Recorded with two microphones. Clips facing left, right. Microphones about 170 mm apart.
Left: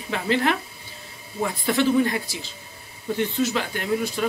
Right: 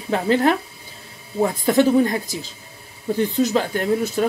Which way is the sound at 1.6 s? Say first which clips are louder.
Right 4 dB; 40° right (ahead or behind).